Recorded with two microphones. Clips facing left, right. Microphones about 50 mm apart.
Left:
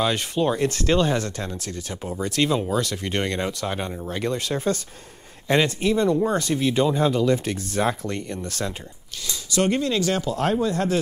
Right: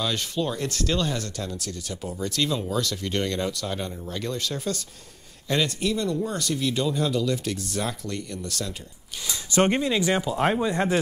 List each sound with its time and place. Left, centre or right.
0.0 s speech: left
9.5 s speech: right